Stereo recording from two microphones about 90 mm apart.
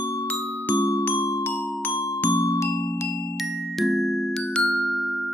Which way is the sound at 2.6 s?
35° left (ahead or behind).